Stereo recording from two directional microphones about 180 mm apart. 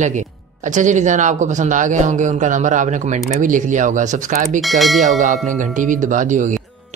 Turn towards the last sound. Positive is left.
turn(degrees=-45)  # may be behind; listen again after turning